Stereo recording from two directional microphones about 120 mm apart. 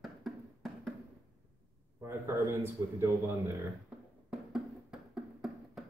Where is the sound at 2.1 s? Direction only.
20° right (ahead or behind).